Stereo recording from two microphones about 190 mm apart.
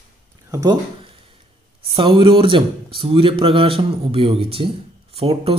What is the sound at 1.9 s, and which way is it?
Speech, 30° right (ahead or behind).